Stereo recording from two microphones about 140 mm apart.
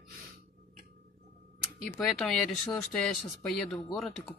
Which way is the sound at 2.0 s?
Centre (ahead or behind).